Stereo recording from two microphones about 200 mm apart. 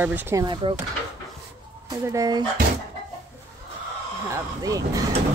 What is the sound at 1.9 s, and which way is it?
Speech, 15° right (ahead or behind).